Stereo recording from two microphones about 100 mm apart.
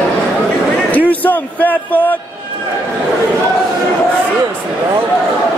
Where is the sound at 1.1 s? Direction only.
15° left (ahead or behind).